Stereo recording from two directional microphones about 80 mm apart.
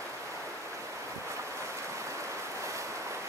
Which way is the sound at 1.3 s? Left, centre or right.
Right.